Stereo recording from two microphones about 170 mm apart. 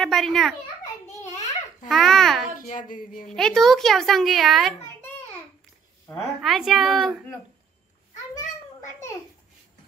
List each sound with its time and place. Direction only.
0.0 s a child's voice: centre (ahead or behind)
1.9 s speech: centre (ahead or behind)
2.7 s a sound: 50° left (ahead or behind)
3.3 s speech: 5° left (ahead or behind)
6.0 s speech: centre (ahead or behind)